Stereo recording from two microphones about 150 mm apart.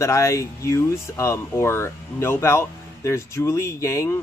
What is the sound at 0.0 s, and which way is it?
Speech, 20° left (ahead or behind).